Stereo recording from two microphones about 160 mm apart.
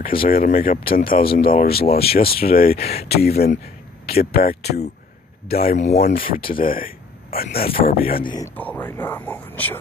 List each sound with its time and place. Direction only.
0.0 s speech: 65° left (ahead or behind)
8.2 s speech: 25° left (ahead or behind)
8.5 s speech: 10° left (ahead or behind)